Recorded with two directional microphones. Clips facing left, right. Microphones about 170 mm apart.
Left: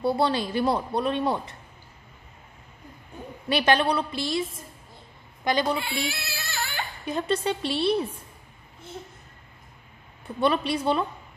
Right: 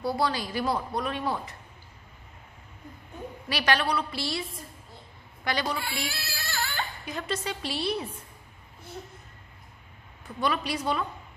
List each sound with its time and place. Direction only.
0.0 s speech: 25° left (ahead or behind)
3.4 s speech: 25° left (ahead or behind)
5.4 s speech: 20° left (ahead or behind)
10.2 s speech: 30° left (ahead or behind)